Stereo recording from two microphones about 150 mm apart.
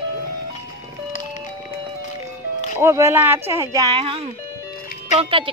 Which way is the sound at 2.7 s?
20° right (ahead or behind).